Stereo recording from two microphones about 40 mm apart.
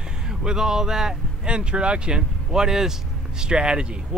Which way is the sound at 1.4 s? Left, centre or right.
Right.